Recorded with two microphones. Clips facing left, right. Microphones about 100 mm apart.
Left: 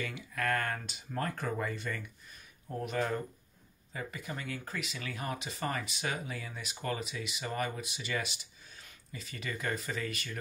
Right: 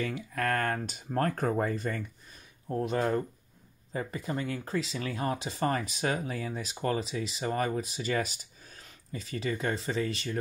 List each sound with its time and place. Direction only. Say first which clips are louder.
0.0 s speech: right 4 dB; 35° right (ahead or behind)